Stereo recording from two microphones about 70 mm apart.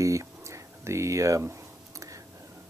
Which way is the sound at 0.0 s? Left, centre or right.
Right.